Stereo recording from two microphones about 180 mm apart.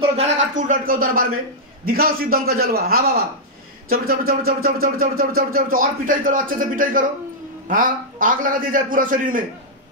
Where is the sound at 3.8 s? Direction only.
55° right (ahead or behind).